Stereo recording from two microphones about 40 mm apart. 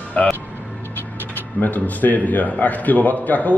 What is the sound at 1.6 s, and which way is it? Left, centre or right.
A man's voice, left.